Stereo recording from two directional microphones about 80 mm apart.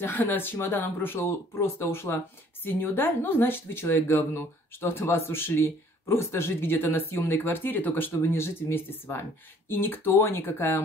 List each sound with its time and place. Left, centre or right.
0.0 s speech: left